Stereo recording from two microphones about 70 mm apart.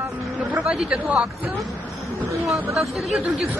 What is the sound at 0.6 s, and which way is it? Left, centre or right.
Speech, centre.